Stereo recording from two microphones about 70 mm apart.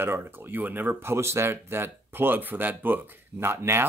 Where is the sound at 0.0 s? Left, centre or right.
Right.